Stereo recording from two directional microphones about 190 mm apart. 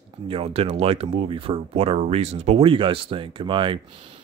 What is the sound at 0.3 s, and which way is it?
Speech, 30° right (ahead or behind).